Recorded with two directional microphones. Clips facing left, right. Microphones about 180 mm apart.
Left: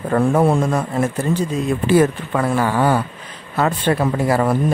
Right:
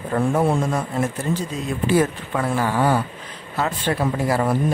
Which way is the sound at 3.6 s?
60° left (ahead or behind).